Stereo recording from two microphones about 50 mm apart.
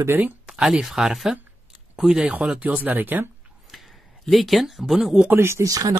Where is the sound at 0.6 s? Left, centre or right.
Centre.